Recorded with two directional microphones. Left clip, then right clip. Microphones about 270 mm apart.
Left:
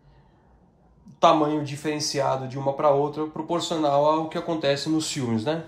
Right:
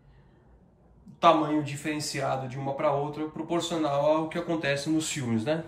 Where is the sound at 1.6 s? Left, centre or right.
Centre.